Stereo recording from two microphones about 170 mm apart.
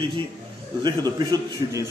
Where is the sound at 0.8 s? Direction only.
25° right (ahead or behind).